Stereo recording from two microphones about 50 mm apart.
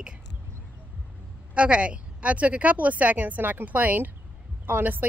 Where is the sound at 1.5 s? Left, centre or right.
Right.